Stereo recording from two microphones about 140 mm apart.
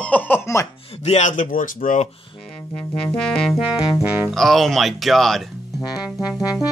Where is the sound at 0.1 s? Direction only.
15° left (ahead or behind).